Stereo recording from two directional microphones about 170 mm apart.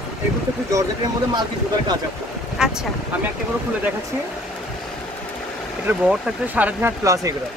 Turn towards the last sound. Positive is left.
turn(degrees=-15)  # may be behind; listen again after turning